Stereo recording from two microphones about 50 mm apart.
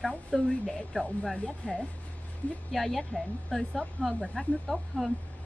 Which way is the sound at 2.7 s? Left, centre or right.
Centre.